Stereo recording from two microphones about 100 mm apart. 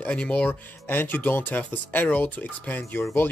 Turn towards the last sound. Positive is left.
turn(degrees=15)  # may be behind; listen again after turning